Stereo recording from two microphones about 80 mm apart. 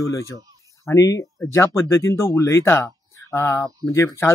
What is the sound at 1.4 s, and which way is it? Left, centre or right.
A man's voice, left.